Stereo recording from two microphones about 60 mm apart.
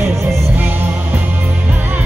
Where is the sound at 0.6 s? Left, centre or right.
Right.